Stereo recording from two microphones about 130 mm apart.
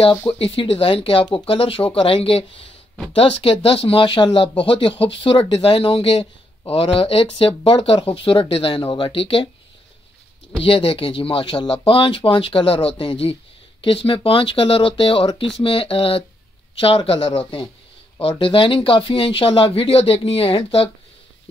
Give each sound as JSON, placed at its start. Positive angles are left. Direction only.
{"t": 0.4, "sound": "speech", "side_deg": 45}
{"t": 10.6, "sound": "speech", "side_deg": 45}